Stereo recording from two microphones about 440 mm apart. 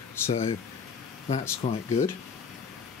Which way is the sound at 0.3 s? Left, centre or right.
Centre.